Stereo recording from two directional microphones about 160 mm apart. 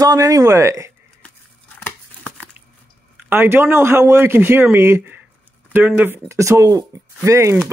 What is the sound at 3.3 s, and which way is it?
Speech, 15° right (ahead or behind).